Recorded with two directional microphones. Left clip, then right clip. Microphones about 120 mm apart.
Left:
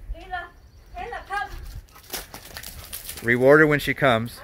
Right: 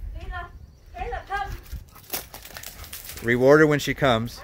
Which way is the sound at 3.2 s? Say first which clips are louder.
Left 1 dB; 20° right (ahead or behind).